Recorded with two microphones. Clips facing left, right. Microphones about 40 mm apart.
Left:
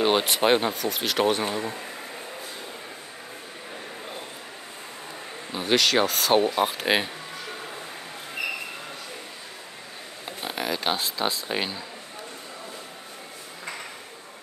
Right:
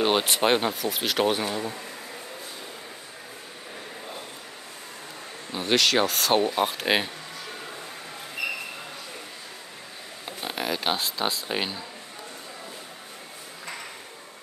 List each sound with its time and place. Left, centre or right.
0.0 s speech: centre
1.5 s speech: centre
5.5 s speech: centre
8.4 s a sound: centre
10.2 s speech: centre